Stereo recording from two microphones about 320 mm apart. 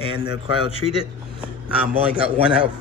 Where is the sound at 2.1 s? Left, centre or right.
Centre.